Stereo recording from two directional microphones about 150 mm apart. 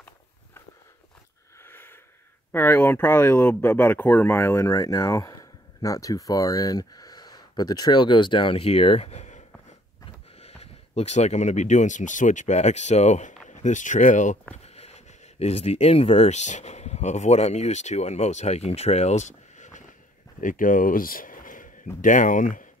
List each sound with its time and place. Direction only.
1.6 s a sound: 15° left (ahead or behind)
2.5 s speech: 15° left (ahead or behind); by 9.4 s 50° left (ahead or behind)
10.4 s speech: 45° left (ahead or behind)
14.5 s speech: 45° left (ahead or behind); by 22.7 s 60° left (ahead or behind)